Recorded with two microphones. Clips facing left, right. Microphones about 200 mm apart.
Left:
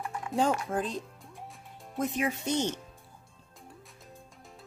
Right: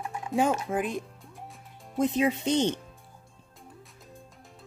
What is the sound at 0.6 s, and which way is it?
Music, 10° right (ahead or behind).